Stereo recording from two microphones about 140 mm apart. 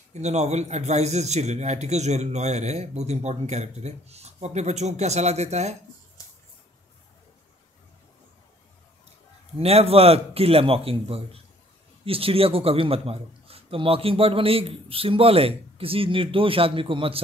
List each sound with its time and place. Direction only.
0.1 s a man's voice: 55° right (ahead or behind)
9.6 s a man's voice: 45° right (ahead or behind)